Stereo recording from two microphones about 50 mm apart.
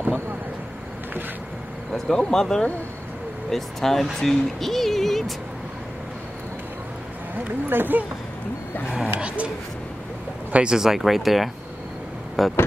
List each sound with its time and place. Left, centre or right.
2.0 s speech: centre
7.7 s speech: right
8.9 s speech: right
10.5 s speech: right
10.8 s speech: centre